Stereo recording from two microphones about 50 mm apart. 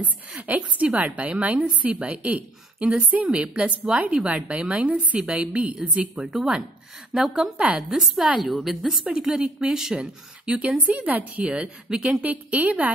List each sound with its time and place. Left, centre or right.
0.4 s a woman's voice: right
3.3 s a woman's voice: right
6.1 s a woman's voice: centre
9.1 s a woman's voice: centre
10.8 s a woman's voice: right
11.4 s a woman's voice: right